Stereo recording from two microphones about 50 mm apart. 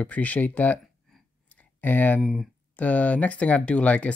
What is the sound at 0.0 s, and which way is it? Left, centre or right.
Speech, left.